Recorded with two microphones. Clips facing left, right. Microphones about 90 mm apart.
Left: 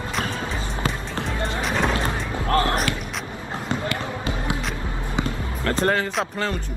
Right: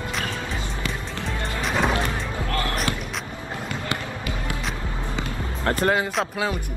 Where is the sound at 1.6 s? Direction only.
Centre (ahead or behind).